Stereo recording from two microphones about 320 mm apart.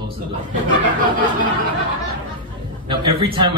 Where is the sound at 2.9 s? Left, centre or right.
Centre.